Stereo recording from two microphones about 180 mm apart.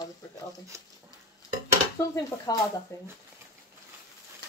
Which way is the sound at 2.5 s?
20° left (ahead or behind).